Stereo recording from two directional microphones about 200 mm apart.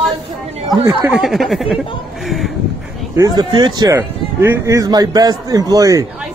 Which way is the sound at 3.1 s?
20° right (ahead or behind).